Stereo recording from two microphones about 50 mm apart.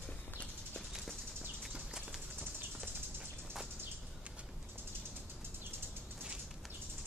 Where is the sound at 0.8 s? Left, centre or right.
Centre.